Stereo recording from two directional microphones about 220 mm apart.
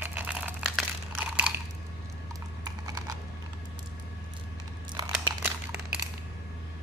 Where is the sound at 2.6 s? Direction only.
15° right (ahead or behind).